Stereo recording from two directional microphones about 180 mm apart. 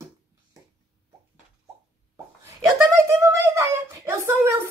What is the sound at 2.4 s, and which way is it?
A woman's voice, 15° right (ahead or behind).